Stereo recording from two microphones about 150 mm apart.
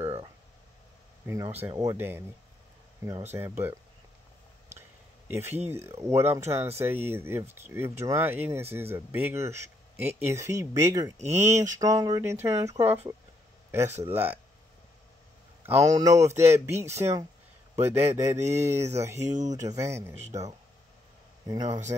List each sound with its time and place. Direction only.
0.0 s a sound: 30° right (ahead or behind)
1.2 s speech: 20° right (ahead or behind)
3.3 s speech: 15° right (ahead or behind)
5.3 s speech: 15° right (ahead or behind)
14.0 s speech: 15° right (ahead or behind)
15.6 s speech: 20° right (ahead or behind)
19.2 s speech: 55° right (ahead or behind)
19.5 s speech: 20° right (ahead or behind)
21.5 s speech: 25° right (ahead or behind)